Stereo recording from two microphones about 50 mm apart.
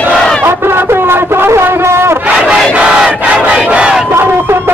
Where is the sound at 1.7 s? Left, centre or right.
Right.